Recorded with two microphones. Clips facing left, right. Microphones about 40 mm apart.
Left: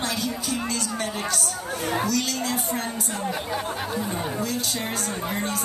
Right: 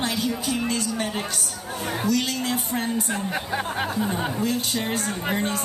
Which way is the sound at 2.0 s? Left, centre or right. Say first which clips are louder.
Right 1 dB; right.